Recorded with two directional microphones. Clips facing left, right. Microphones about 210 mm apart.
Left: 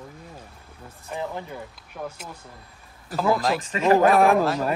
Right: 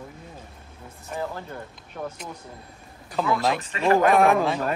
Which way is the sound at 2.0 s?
Centre (ahead or behind).